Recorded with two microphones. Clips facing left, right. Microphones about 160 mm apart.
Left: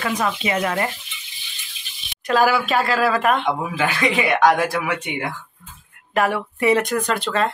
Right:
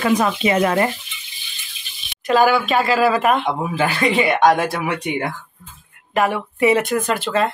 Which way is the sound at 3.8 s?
30° right (ahead or behind).